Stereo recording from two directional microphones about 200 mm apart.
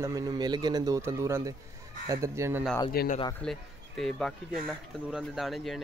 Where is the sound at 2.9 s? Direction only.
50° left (ahead or behind).